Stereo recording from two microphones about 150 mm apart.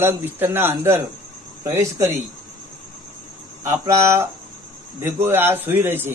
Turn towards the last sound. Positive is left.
turn(degrees=-15)  # may be behind; listen again after turning